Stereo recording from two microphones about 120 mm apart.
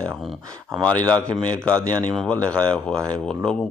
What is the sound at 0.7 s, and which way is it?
Speech, 10° left (ahead or behind).